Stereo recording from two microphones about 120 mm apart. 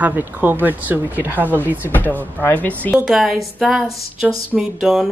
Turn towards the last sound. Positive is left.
turn(degrees=-5)  # may be behind; listen again after turning